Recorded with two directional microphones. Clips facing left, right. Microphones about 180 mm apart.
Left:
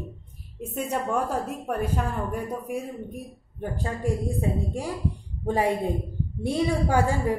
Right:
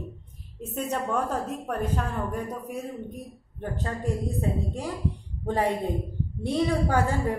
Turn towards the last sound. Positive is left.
turn(degrees=10)  # may be behind; listen again after turning